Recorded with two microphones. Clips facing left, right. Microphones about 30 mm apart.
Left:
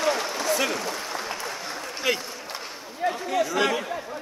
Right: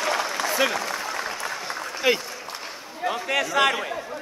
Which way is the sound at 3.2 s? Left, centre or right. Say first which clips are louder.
Right 4 dB; right.